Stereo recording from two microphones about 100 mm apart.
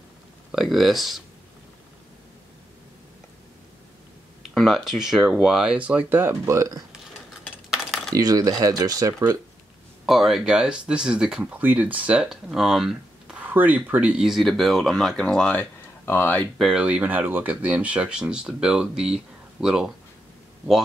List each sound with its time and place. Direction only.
0.5 s speech: 5° right (ahead or behind)
4.6 s speech: centre (ahead or behind); by 6.8 s 30° right (ahead or behind)
7.4 s a sound: 5° right (ahead or behind)
8.1 s speech: 40° right (ahead or behind)
10.0 s speech: centre (ahead or behind)
13.5 s speech: 15° right (ahead or behind); by 16.4 s 20° left (ahead or behind)
16.5 s speech: 5° right (ahead or behind)